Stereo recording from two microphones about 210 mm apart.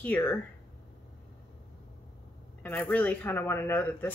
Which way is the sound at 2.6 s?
10° left (ahead or behind).